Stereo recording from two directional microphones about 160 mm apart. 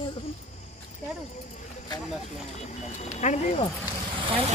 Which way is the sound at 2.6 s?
45° left (ahead or behind).